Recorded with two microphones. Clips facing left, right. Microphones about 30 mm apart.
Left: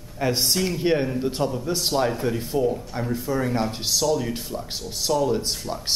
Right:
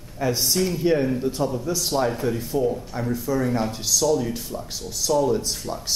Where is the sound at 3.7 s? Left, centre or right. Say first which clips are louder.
Right 1 dB; left.